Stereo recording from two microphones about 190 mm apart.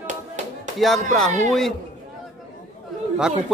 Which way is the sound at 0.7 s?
Centre (ahead or behind).